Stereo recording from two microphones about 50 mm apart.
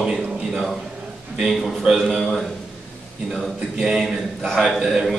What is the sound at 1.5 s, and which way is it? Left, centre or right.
A man's voice, centre.